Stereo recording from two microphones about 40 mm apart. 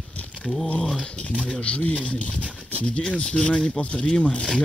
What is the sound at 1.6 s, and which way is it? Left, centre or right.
Speech, left.